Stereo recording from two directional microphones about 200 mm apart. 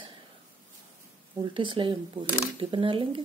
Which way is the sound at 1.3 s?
25° right (ahead or behind).